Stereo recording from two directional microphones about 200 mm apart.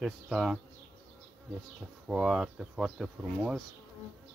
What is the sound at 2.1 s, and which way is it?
Speech, 5° right (ahead or behind).